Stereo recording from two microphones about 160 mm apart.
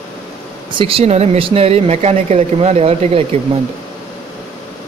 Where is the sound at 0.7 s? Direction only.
35° right (ahead or behind).